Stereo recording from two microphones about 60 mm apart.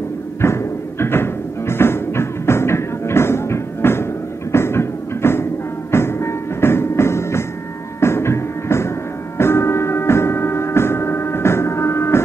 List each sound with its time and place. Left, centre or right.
0.4 s music: left